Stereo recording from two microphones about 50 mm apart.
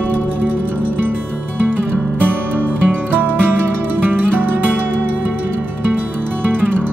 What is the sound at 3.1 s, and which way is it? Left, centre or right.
Music, right.